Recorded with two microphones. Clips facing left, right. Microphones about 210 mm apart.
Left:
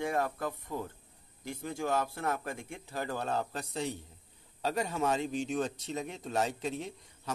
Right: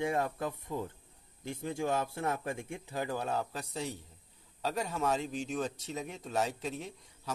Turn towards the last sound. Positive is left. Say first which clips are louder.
# left 3 dB
turn(degrees=0)  # may be behind; listen again after turning